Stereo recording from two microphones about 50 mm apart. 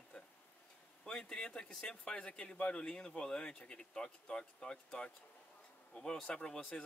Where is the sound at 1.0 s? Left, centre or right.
Centre.